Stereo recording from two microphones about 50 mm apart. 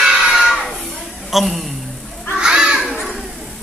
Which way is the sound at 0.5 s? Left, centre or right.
Centre.